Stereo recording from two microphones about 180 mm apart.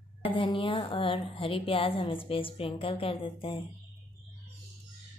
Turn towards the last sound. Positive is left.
turn(degrees=30)  # may be behind; listen again after turning